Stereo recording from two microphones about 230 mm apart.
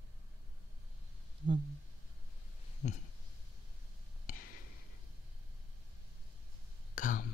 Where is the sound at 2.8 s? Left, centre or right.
Left.